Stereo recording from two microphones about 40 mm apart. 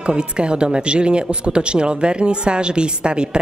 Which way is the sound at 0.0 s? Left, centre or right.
Right.